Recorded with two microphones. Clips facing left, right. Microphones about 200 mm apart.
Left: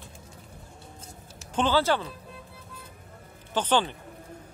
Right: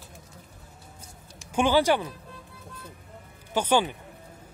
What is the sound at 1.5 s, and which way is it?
Speech, 15° right (ahead or behind).